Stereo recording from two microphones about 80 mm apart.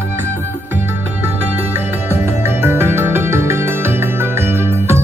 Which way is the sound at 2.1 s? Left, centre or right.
Right.